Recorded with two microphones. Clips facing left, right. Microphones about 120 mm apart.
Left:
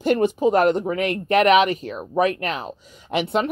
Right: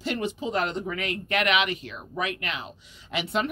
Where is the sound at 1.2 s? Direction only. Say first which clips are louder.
Left 10 dB; 40° left (ahead or behind).